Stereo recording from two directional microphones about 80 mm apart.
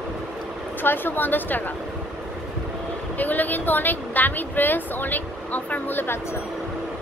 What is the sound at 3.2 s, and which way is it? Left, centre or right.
A woman's voice, left.